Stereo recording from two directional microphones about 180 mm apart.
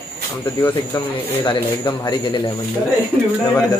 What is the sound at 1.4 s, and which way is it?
Speech, 25° left (ahead or behind).